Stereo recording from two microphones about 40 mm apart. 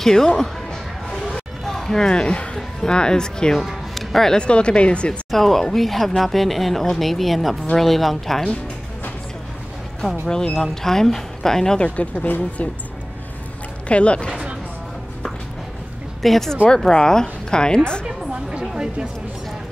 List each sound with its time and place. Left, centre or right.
0.0 s music: centre
2.0 s speech: left
2.5 s speech: centre
3.5 s music: centre
4.3 s speech: left
5.3 s speech: centre
10.2 s speech: centre
11.8 s speech: left
13.8 s speech: left
16.2 s speech: centre
16.6 s speech: centre
18.0 s a sound: right